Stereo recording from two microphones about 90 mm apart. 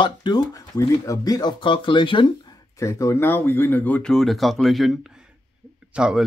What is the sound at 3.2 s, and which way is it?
Speech, 25° left (ahead or behind).